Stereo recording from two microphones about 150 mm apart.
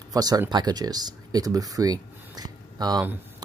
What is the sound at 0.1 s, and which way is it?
Speech, 25° right (ahead or behind).